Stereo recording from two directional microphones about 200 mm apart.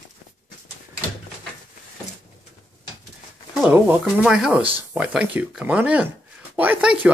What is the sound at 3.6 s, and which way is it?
Speech, 10° right (ahead or behind).